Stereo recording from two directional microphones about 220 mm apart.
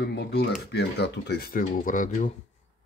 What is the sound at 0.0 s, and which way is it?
Speech, 50° left (ahead or behind).